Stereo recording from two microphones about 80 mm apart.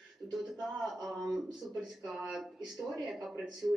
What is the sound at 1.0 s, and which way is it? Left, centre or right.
Speech, centre.